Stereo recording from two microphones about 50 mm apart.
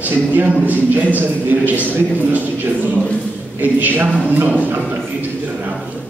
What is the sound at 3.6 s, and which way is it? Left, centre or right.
Speech, right.